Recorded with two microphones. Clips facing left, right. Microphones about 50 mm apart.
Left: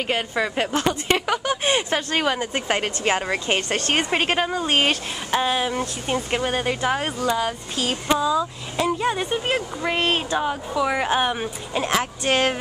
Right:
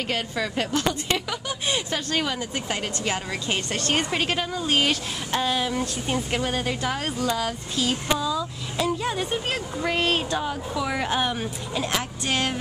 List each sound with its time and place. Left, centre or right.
0.1 s speech: left
5.3 s speech: left
7.7 s speech: left
8.1 s speech: left
11.8 s speech: left